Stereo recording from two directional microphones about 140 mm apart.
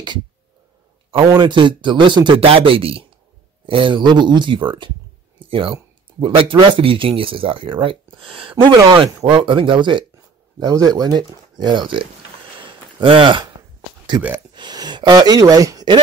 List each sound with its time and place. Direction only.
1.4 s speech: 35° right (ahead or behind)
12.5 s a sound: 35° right (ahead or behind)
14.5 s speech: 30° right (ahead or behind)